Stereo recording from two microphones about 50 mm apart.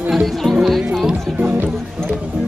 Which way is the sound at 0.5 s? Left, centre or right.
Centre.